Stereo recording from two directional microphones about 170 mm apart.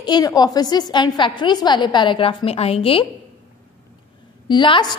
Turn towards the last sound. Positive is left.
turn(degrees=25)  # may be behind; listen again after turning